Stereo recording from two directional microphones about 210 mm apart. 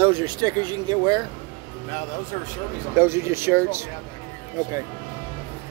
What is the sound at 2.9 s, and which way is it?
Speech, 10° right (ahead or behind).